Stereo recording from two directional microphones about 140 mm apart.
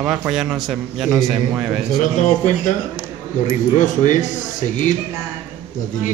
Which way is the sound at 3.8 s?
65° left (ahead or behind).